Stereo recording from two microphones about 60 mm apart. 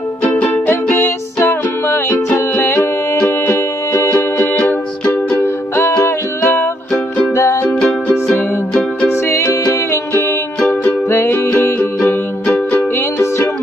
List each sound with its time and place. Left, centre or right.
0.9 s music: left
4.6 s music: left
6.0 s music: left
7.3 s music: left
7.6 s music: centre
9.1 s music: left
12.0 s music: left
12.9 s music: left